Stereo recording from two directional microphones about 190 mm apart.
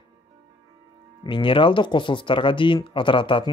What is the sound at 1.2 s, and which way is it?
Speech, 25° left (ahead or behind).